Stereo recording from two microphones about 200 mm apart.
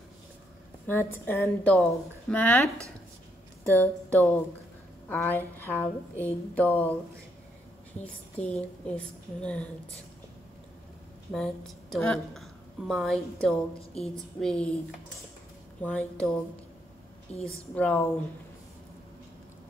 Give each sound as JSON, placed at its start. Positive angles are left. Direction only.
{"t": 0.8, "sound": "a woman's voice", "side_deg": 10}
{"t": 8.0, "sound": "a woman's voice", "side_deg": 5}
{"t": 11.3, "sound": "a woman's voice", "side_deg": 0}
{"t": 13.7, "sound": "a woman's voice", "side_deg": 30}
{"t": 14.4, "sound": "a woman's voice", "side_deg": 5}
{"t": 15.8, "sound": "a woman's voice", "side_deg": 5}
{"t": 17.3, "sound": "a woman's voice", "side_deg": 30}
{"t": 17.7, "sound": "a woman's voice", "side_deg": 5}